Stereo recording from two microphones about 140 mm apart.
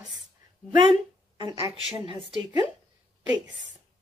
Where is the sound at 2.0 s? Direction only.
35° right (ahead or behind).